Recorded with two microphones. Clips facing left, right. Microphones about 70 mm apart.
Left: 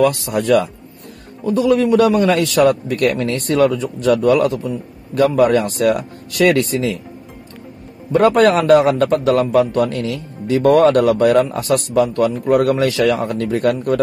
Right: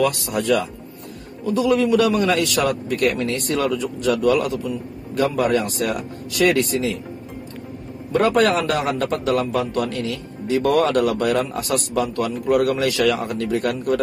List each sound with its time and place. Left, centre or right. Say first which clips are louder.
0.0 s a man's voice: left 5 dB; left
8.1 s a man's voice: left 5 dB; left